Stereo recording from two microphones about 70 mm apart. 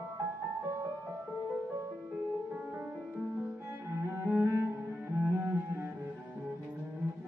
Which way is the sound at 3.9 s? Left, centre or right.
Right.